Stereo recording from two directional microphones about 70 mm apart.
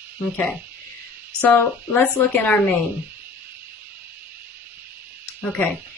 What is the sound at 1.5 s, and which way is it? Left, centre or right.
Speech, left.